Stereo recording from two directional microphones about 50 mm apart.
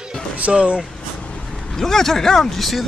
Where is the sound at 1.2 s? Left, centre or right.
Left.